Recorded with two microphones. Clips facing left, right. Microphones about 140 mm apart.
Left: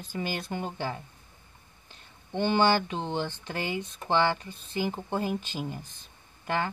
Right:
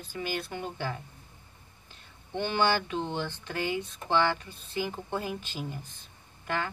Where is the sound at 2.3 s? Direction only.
25° left (ahead or behind).